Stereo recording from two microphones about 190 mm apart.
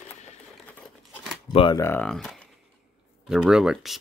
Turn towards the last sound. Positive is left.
turn(degrees=0)  # may be behind; listen again after turning